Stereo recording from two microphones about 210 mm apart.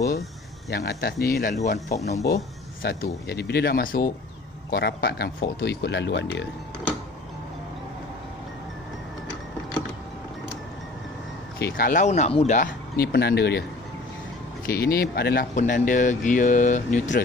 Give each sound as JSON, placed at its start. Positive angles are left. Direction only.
{"t": 0.7, "sound": "speech", "side_deg": 50}
{"t": 11.6, "sound": "speech", "side_deg": 45}
{"t": 13.0, "sound": "speech", "side_deg": 50}
{"t": 14.7, "sound": "speech", "side_deg": 45}